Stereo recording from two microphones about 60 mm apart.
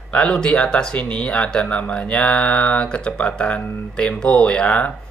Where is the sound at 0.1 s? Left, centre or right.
Centre.